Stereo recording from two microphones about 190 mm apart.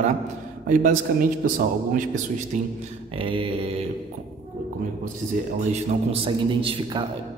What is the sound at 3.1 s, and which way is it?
Speech, 25° right (ahead or behind).